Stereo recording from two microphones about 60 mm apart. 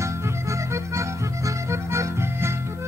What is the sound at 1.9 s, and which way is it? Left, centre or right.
Music, right.